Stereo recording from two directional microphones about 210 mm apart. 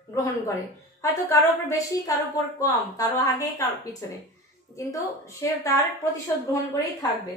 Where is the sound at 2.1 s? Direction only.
15° left (ahead or behind).